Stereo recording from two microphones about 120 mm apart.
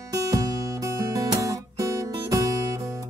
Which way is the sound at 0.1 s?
30° right (ahead or behind).